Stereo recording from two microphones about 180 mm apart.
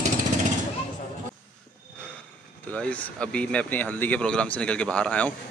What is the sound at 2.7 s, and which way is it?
Speech, 5° left (ahead or behind).